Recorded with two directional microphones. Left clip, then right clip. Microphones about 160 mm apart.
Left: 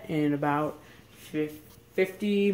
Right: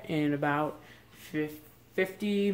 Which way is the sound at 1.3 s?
10° right (ahead or behind).